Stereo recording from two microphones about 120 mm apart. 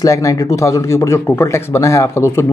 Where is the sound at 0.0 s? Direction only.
25° left (ahead or behind).